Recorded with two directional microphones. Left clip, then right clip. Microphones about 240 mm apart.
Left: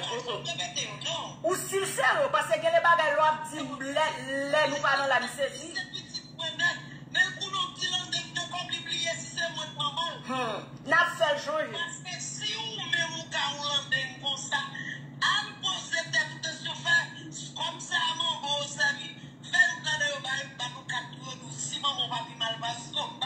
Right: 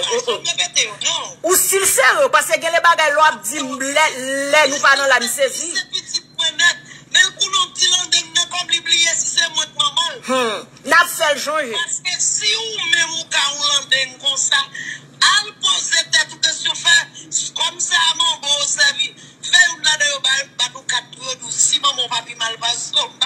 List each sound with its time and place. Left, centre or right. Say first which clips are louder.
0.0 s speech: right 14 dB; right
12.6 s music: right 13 dB; right
14.5 s speech: right 13 dB; right
19.4 s music: right 12 dB; right